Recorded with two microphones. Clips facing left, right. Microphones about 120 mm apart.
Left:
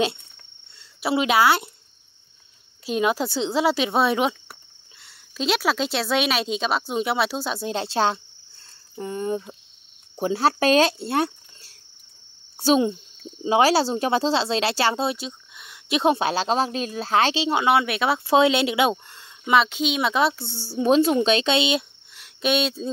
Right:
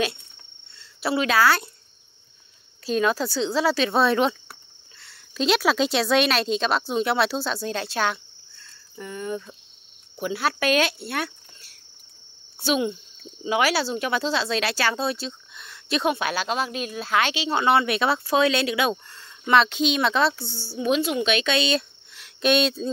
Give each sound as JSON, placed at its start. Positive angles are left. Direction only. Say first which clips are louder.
{"t": 0.7, "sound": "speech", "louder": "left 1 dB", "side_deg": 15}
{"t": 2.8, "sound": "a woman's voice", "louder": "even", "side_deg": 15}
{"t": 16.0, "sound": "speech", "louder": "left 4 dB", "side_deg": 30}
{"t": 17.5, "sound": "speech", "louder": "even", "side_deg": 10}
{"t": 18.2, "sound": "speech", "louder": "left 3 dB", "side_deg": 25}
{"t": 22.1, "sound": "speech", "louder": "right 2 dB", "side_deg": 5}